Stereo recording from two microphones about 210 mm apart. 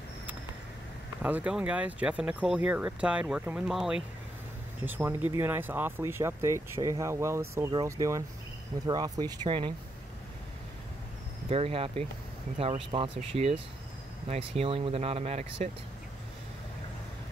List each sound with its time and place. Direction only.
1.2 s speech: 5° right (ahead or behind); by 9.8 s 25° right (ahead or behind)
11.4 s speech: 25° right (ahead or behind)